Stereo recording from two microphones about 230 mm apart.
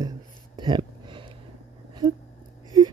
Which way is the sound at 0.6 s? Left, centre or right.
Centre.